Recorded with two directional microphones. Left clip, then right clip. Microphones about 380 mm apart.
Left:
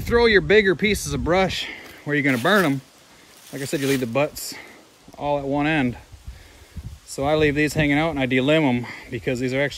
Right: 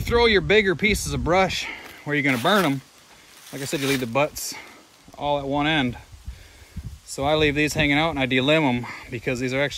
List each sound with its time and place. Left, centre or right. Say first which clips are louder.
0.4 s speech: left 2 dB; centre
3.4 s speech: left 1 dB; centre
7.1 s speech: left 1 dB; centre